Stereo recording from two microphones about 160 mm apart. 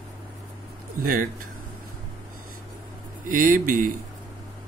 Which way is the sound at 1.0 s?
65° right (ahead or behind).